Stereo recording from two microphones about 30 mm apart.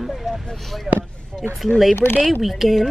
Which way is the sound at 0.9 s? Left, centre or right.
Centre.